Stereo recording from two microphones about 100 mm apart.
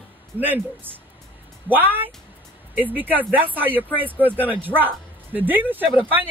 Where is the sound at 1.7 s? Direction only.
20° right (ahead or behind).